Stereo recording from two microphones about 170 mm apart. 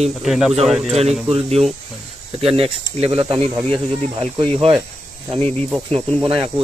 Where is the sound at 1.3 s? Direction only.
35° right (ahead or behind).